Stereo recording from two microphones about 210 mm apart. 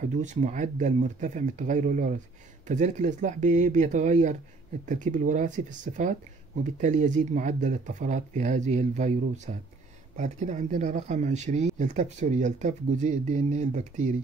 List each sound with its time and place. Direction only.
0.1 s speech: 35° right (ahead or behind)